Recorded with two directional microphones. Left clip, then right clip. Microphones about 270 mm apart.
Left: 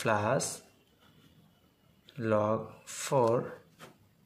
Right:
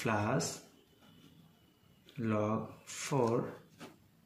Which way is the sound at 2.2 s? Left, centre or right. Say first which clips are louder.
Left 6 dB; left.